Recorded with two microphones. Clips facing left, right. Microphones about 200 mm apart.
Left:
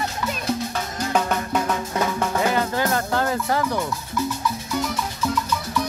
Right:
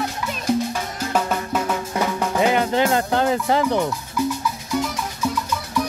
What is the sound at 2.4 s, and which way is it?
Music, 20° right (ahead or behind).